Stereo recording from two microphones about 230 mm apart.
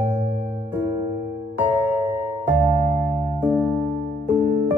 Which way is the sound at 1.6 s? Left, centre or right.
Centre.